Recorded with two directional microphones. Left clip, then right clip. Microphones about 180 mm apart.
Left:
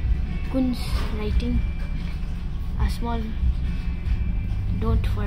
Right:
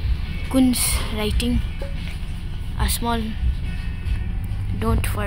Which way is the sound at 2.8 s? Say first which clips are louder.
Right 7 dB; 20° right (ahead or behind).